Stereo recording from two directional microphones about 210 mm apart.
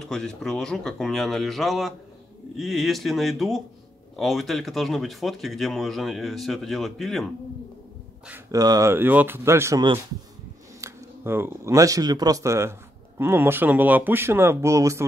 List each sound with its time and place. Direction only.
0.0 s speech: centre (ahead or behind)
8.3 s speech: 15° right (ahead or behind)